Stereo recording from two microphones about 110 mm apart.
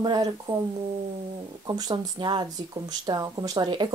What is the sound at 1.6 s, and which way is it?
Speech, 40° right (ahead or behind).